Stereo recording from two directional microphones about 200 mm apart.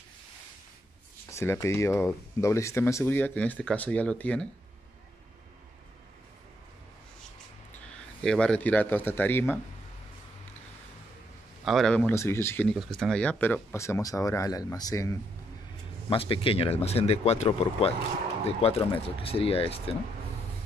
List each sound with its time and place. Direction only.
1.3 s speech: 15° left (ahead or behind)
8.2 s speech: 5° left (ahead or behind)
11.6 s speech: centre (ahead or behind)
12.7 s speech: centre (ahead or behind); by 15.1 s 15° left (ahead or behind)
16.1 s speech: 25° left (ahead or behind)